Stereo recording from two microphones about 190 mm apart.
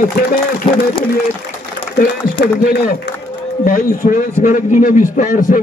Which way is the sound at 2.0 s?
55° left (ahead or behind).